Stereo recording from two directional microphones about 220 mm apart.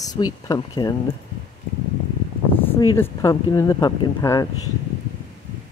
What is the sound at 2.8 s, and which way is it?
Speech, 15° left (ahead or behind).